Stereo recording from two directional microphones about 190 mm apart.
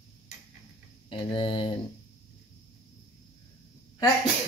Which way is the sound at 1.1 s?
30° left (ahead or behind).